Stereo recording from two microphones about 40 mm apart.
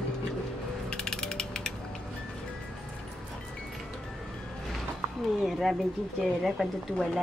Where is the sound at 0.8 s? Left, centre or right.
Centre.